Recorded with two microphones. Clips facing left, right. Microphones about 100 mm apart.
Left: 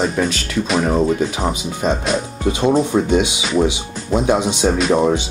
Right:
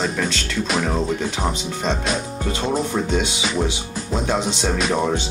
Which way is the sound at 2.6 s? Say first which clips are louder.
Left 7 dB; 15° left (ahead or behind).